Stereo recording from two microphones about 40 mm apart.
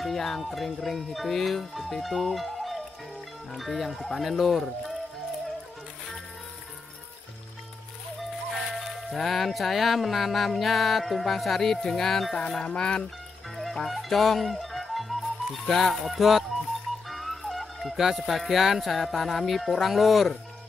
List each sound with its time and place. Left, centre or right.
0.0 s speech: centre
8.2 s speech: centre
12.4 s a sound: centre
13.8 s speech: centre
17.1 s music: centre
17.9 s speech: centre